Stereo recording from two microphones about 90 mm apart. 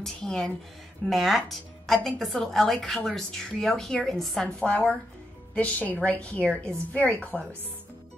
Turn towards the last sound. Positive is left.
turn(degrees=15)  # may be behind; listen again after turning